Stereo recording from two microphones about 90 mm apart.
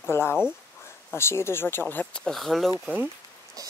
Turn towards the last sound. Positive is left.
turn(degrees=-40)  # may be behind; listen again after turning